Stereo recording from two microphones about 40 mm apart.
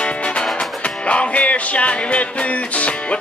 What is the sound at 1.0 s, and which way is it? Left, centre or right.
Music, left.